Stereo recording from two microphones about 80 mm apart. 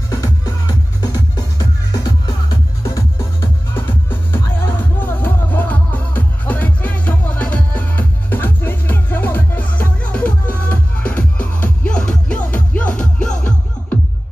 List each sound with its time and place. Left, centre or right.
0.1 s music: left
2.8 s music: left
3.7 s music: left